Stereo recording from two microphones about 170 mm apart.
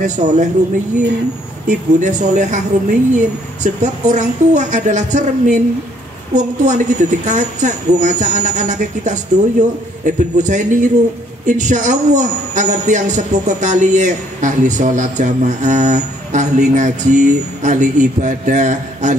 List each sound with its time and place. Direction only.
0.0 s speech: 45° right (ahead or behind)
1.7 s speech: 45° right (ahead or behind)